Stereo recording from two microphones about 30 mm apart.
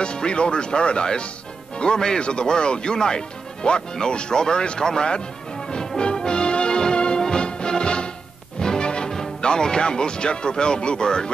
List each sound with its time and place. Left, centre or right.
0.0 s speech: left
5.7 s music: left
9.4 s speech: left